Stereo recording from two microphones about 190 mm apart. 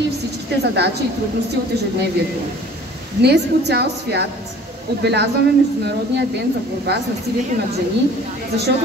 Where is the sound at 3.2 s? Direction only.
60° right (ahead or behind).